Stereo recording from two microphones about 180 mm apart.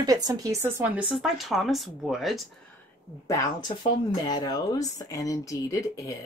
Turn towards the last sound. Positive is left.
turn(degrees=20)  # may be behind; listen again after turning